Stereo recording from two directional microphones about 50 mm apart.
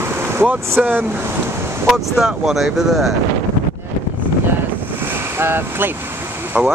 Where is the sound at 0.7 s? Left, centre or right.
Right.